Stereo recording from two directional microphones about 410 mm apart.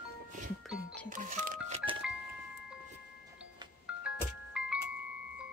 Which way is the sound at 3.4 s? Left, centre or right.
Centre.